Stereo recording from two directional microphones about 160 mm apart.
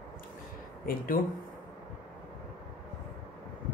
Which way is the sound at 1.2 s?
60° left (ahead or behind).